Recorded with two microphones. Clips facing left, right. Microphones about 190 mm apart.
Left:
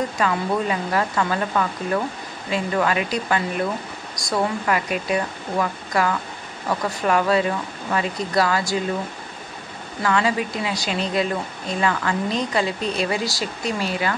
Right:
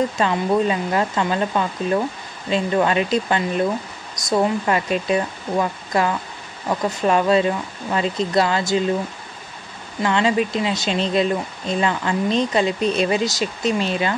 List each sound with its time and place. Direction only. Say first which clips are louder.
0.2 s speech: right 2 dB; 25° right (ahead or behind)
10.0 s speech: right 3 dB; 20° right (ahead or behind)